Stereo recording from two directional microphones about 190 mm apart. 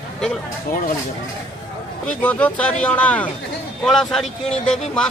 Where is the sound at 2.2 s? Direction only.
10° left (ahead or behind).